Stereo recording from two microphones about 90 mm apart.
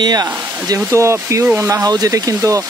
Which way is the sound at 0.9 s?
30° right (ahead or behind).